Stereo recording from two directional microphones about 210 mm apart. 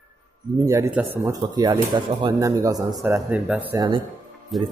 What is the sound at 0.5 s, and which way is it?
Speech, 15° right (ahead or behind).